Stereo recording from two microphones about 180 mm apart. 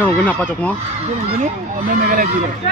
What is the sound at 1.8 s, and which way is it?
Speech, 50° right (ahead or behind).